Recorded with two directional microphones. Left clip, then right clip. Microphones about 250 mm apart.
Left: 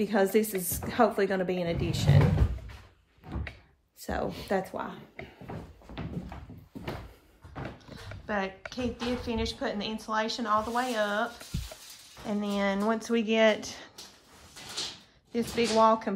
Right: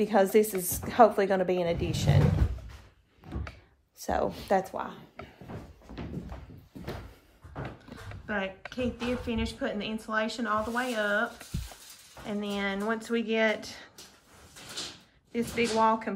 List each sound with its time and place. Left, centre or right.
0.0 s a woman's voice: centre
4.0 s a woman's voice: centre
5.9 s thump: centre
8.3 s speech: centre
12.3 s speech: left
15.3 s speech: left